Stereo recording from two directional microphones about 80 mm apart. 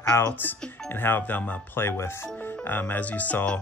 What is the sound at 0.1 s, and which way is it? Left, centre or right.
Speech, left.